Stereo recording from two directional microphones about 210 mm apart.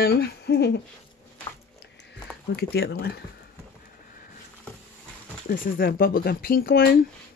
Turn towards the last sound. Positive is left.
turn(degrees=45)  # may be behind; listen again after turning